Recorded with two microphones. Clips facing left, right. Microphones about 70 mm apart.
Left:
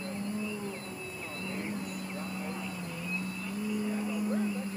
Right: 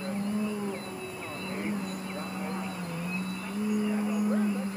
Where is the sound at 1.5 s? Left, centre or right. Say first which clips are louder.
Right 4 dB; right.